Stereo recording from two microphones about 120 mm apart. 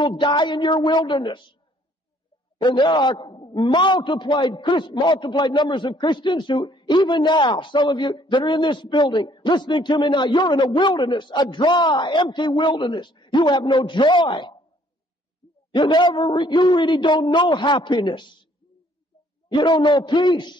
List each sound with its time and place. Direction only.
0.0 s a man's voice: 40° left (ahead or behind)
2.6 s a man's voice: 40° left (ahead or behind)
15.7 s a man's voice: 40° left (ahead or behind)
19.5 s a man's voice: 40° left (ahead or behind)